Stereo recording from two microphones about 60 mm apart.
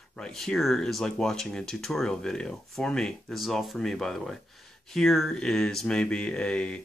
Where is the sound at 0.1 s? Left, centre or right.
Centre.